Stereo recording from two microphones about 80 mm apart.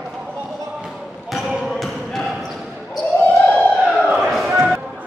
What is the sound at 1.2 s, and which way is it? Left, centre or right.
Basketball bounce, centre.